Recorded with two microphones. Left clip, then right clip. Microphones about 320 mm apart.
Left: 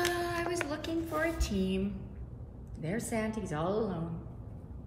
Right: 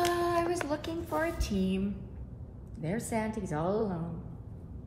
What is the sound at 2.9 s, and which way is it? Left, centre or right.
Speech, centre.